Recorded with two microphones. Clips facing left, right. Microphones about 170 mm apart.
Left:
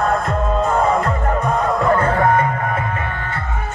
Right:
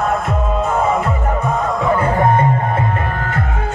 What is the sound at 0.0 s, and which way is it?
Music, centre (ahead or behind).